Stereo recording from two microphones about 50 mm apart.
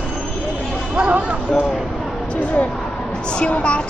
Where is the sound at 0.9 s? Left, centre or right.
Right.